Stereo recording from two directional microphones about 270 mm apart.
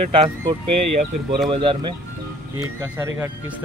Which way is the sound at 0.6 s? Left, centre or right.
Right.